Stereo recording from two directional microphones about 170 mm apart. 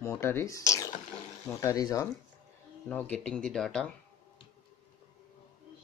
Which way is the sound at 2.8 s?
10° left (ahead or behind).